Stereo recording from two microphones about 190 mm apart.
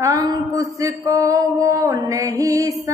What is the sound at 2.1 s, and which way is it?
Music, 15° right (ahead or behind).